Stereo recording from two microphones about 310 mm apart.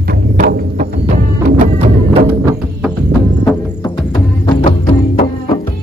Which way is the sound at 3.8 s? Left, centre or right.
Centre.